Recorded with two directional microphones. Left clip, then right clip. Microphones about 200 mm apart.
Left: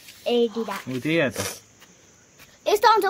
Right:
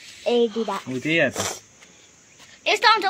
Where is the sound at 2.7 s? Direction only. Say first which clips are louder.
Even; 40° left (ahead or behind).